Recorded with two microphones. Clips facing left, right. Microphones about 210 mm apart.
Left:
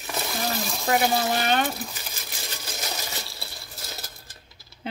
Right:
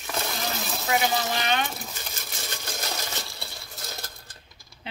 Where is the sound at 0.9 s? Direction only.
45° left (ahead or behind).